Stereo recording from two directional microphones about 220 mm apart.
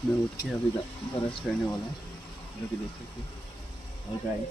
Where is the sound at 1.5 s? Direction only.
Centre (ahead or behind).